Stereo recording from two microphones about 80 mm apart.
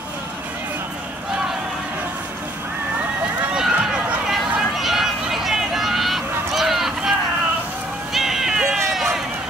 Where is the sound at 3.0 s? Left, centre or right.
Centre.